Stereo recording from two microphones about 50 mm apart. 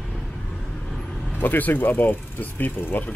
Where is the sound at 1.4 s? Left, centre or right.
Left.